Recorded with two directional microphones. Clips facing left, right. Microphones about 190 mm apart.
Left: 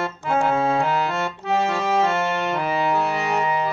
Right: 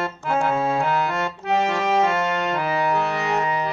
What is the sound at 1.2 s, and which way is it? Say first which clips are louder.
Accordion: even; centre (ahead or behind).